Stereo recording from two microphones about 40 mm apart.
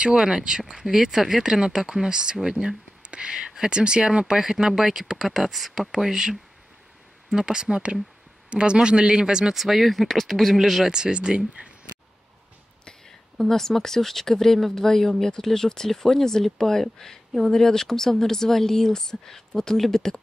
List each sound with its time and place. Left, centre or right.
0.3 s speech: centre
0.7 s speech: centre
9.6 s speech: centre
10.9 s speech: centre
13.4 s speech: centre